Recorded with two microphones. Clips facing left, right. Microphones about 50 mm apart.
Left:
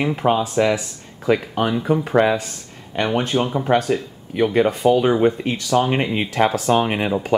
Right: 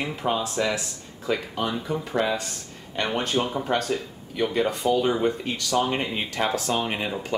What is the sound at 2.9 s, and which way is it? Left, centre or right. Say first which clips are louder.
Speech: left 5 dB; centre.